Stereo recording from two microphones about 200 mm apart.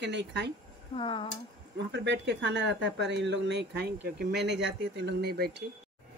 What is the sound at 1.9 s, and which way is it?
Speech, 60° right (ahead or behind).